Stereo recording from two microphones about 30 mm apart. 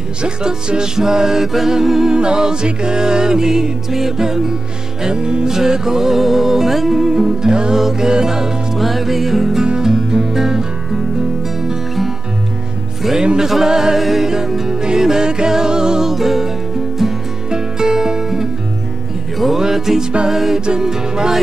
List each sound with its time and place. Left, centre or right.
0.2 s music: right
5.0 s music: right
5.5 s music: centre
7.1 s music: right
8.7 s music: centre
9.8 s music: centre
13.4 s music: centre
13.9 s music: centre; by 16.1 s right
16.1 s music: centre
17.5 s music: right
19.5 s music: centre